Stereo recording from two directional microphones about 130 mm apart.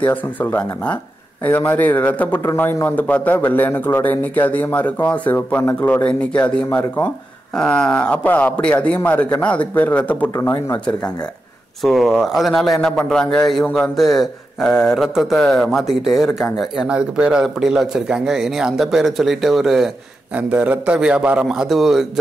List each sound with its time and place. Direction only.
0.0 s a man's voice: 15° left (ahead or behind)
10.3 s speech: 20° left (ahead or behind)
11.8 s a man's voice: centre (ahead or behind)